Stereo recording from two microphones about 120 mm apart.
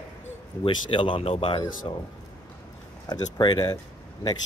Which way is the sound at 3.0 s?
35° left (ahead or behind).